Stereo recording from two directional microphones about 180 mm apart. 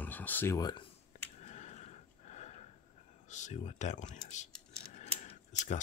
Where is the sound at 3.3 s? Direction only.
40° left (ahead or behind).